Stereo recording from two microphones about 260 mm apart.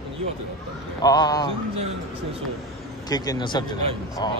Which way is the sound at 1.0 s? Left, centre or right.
Centre.